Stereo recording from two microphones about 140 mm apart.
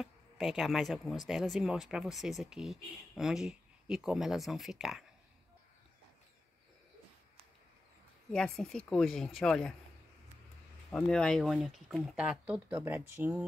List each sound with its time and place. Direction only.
0.0 s speech: centre (ahead or behind)
8.3 s speech: 5° left (ahead or behind)
10.9 s speech: 5° left (ahead or behind); by 13.5 s 15° right (ahead or behind)